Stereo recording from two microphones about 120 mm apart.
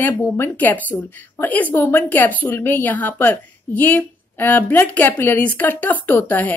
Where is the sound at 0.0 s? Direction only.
15° left (ahead or behind).